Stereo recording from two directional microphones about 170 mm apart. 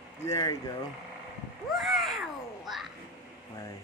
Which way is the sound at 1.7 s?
Centre (ahead or behind).